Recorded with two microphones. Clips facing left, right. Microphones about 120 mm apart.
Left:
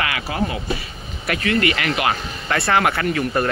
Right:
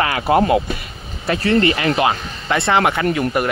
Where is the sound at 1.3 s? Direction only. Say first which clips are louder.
Right 4 dB; 30° right (ahead or behind).